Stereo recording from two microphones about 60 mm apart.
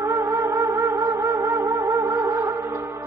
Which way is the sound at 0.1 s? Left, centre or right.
Right.